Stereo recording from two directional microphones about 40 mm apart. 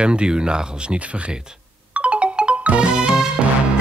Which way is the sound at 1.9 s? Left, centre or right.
Right.